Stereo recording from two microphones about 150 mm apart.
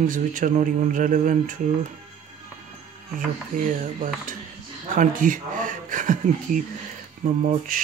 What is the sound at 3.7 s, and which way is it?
Speech, 60° right (ahead or behind).